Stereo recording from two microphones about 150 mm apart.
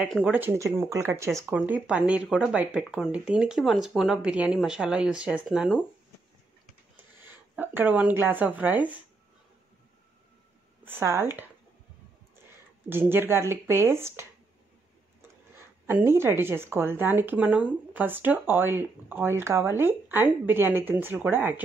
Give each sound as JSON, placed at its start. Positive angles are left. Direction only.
{"t": 0.0, "sound": "speech", "side_deg": -5}
{"t": 7.2, "sound": "speech", "side_deg": -15}
{"t": 10.9, "sound": "speech", "side_deg": -15}
{"t": 12.9, "sound": "speech", "side_deg": -15}
{"t": 15.5, "sound": "speech", "side_deg": -15}